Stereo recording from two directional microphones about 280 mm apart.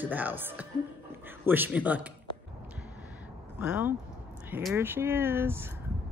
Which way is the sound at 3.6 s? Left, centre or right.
Centre.